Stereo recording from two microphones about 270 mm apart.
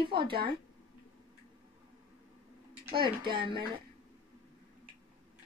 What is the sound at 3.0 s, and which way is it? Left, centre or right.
Speech, centre.